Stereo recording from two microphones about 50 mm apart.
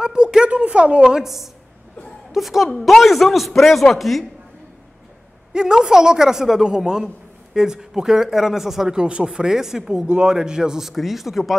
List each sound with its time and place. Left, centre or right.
0.0 s a sound: centre
0.5 s speech: right
1.0 s a man's voice: centre
5.5 s a woman's voice: centre
8.9 s a woman's voice: centre